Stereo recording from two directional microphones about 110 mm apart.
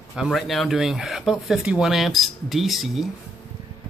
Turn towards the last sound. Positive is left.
turn(degrees=0)  # may be behind; listen again after turning